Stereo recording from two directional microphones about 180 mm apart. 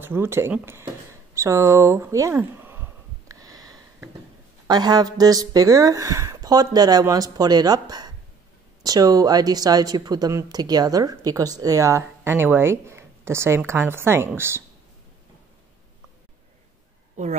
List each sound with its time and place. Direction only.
0.0 s speech: 10° right (ahead or behind)
1.3 s a sound: 15° right (ahead or behind)
4.6 s speech: 25° right (ahead or behind)